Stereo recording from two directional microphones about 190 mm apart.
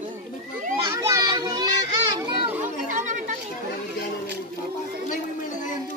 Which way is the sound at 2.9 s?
40° right (ahead or behind).